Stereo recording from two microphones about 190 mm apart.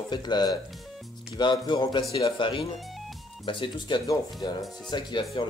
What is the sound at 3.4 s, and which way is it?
Speech, 25° left (ahead or behind).